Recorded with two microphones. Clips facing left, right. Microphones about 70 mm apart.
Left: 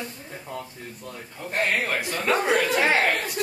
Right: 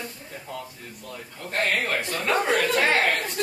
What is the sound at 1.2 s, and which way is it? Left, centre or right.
A man's voice, centre.